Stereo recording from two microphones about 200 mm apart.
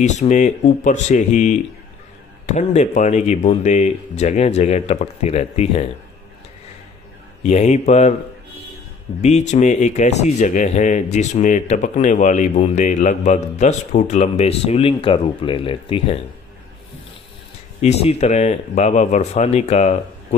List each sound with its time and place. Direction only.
0.0 s speech: 35° left (ahead or behind)
7.4 s speech: 35° left (ahead or behind)
9.2 s speech: 35° left (ahead or behind)
17.8 s speech: 35° left (ahead or behind)